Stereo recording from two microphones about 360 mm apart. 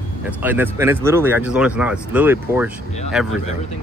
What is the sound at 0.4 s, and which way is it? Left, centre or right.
Speech, centre.